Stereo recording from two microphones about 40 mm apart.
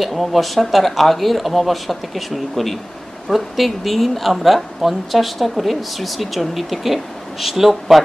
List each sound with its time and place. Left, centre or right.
0.0 s a woman's voice: centre